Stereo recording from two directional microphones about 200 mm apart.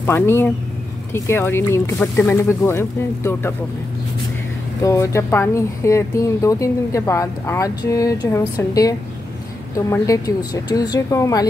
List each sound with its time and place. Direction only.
0.0 s speech: 10° left (ahead or behind)
4.8 s speech: 15° left (ahead or behind)